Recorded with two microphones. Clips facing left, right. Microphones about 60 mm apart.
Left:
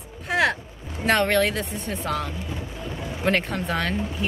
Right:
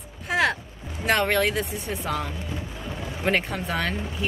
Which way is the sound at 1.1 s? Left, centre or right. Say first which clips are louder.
Left 2 dB; centre.